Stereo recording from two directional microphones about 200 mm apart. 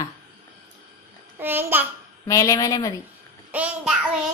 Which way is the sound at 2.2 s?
15° left (ahead or behind).